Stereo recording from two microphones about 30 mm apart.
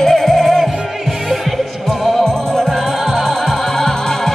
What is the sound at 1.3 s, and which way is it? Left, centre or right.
Music, centre.